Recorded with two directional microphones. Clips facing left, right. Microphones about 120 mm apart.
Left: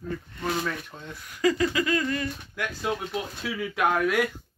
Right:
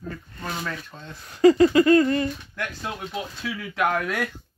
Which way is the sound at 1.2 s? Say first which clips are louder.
Right 8 dB; 30° right (ahead or behind).